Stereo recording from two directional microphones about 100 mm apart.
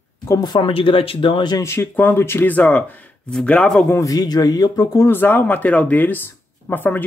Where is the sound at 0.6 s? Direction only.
65° left (ahead or behind).